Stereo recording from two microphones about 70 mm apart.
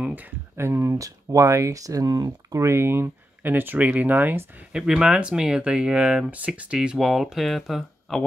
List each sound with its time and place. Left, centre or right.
0.0 s a sound: right
0.6 s speech: right
4.7 s speech: centre